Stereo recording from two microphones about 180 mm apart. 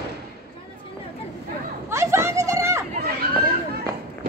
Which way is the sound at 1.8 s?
15° right (ahead or behind).